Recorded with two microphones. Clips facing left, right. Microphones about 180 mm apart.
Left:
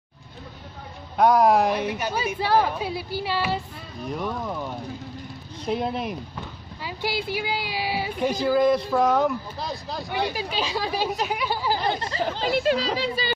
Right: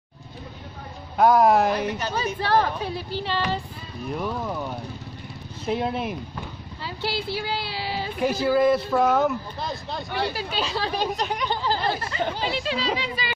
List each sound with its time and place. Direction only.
1.1 s a woman's voice: centre (ahead or behind)
4.1 s speech: centre (ahead or behind)
6.8 s speech: 15° left (ahead or behind)
8.2 s speech: 5° right (ahead or behind)
10.0 s a woman's voice: 15° left (ahead or behind)
12.2 s speech: centre (ahead or behind)
12.7 s speech: 50° left (ahead or behind)
13.0 s speech: 30° left (ahead or behind)